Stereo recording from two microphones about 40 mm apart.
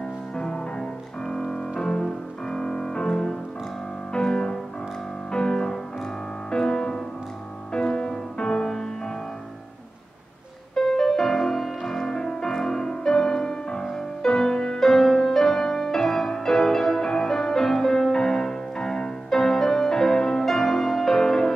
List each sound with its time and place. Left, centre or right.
0.4 s music: centre
10.7 s music: centre